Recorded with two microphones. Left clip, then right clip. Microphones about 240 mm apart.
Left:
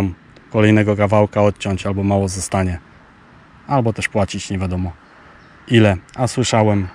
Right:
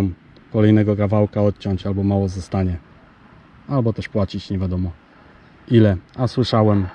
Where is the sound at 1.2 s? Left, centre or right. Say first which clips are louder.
Left 4 dB; left.